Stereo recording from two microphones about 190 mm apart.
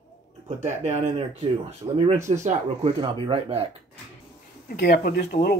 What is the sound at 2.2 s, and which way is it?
Speech, 40° right (ahead or behind).